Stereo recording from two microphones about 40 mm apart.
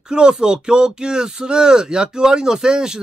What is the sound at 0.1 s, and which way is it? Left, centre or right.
Speech, right.